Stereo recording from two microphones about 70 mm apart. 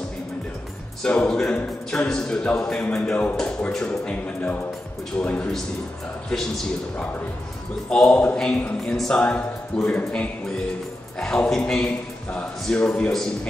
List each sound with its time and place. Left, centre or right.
1.0 s a man's voice: centre
3.0 s a man's voice: left
3.3 s a man's voice: centre
7.9 s a man's voice: centre